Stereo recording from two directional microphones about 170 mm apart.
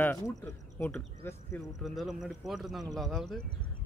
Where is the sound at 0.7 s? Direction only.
10° left (ahead or behind).